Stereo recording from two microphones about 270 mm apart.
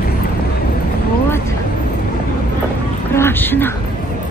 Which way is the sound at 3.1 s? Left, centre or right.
Centre.